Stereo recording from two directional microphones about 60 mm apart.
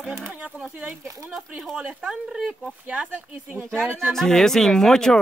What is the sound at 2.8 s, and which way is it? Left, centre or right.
Speech, right.